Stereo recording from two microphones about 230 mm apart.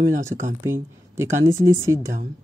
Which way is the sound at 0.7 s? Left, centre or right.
Centre.